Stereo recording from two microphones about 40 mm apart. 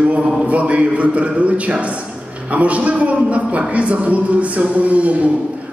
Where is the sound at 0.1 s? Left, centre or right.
Right.